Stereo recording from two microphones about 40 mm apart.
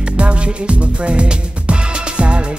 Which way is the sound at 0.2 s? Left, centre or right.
Right.